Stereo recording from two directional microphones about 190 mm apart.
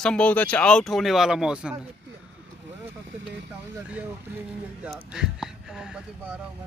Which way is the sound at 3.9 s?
5° right (ahead or behind).